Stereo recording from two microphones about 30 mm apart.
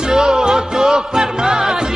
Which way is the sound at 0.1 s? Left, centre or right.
Right.